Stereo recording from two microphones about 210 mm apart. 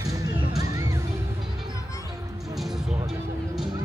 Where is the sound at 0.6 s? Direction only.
15° right (ahead or behind).